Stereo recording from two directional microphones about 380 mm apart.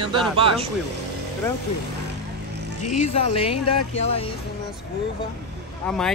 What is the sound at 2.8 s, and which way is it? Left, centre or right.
Speech, centre.